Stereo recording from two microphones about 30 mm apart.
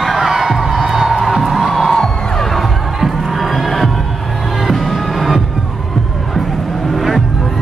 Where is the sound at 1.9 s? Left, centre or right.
Centre.